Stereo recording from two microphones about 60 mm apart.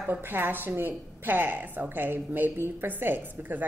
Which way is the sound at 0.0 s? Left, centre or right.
Right.